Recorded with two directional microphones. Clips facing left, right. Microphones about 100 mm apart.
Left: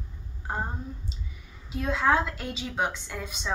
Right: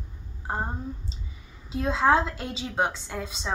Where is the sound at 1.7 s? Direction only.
25° right (ahead or behind).